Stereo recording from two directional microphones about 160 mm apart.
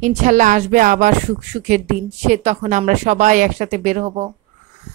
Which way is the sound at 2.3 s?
45° right (ahead or behind).